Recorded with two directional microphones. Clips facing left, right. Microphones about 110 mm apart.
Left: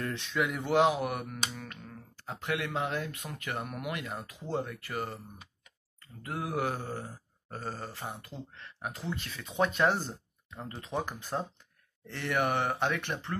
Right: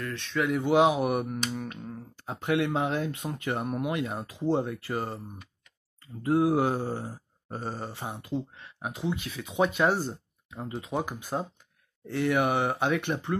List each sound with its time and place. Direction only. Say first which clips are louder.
0.0 s speech: even; 15° left (ahead or behind)
0.3 s speech: right 5 dB; centre (ahead or behind)
0.7 s speech: right 4 dB; 15° right (ahead or behind)
6.2 s mantra: right 9 dB; 25° right (ahead or behind)